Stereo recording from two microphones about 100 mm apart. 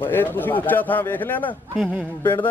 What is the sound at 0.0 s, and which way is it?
Speech, 20° left (ahead or behind).